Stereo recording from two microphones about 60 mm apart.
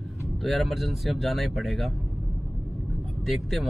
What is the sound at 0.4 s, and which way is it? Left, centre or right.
Speech, centre.